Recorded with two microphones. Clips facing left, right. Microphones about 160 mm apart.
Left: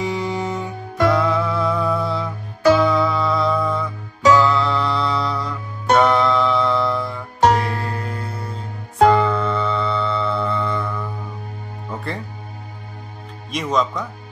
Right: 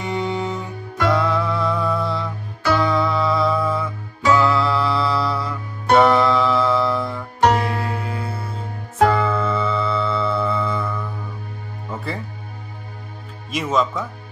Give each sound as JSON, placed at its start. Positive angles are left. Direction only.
{"t": 0.0, "sound": "music", "side_deg": 0}
{"t": 13.5, "sound": "music", "side_deg": -5}